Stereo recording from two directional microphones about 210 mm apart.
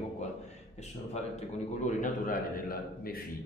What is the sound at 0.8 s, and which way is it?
A man's voice, 30° left (ahead or behind).